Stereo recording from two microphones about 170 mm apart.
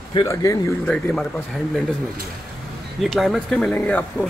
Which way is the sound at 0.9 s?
5° left (ahead or behind).